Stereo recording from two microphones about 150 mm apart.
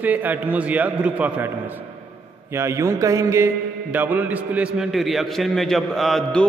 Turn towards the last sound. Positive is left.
turn(degrees=0)  # may be behind; listen again after turning